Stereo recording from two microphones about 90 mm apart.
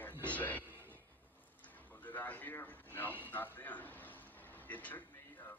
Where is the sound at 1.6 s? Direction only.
20° left (ahead or behind).